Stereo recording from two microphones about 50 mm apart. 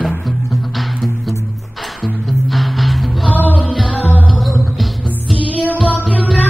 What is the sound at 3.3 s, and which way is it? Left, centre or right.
Music, left.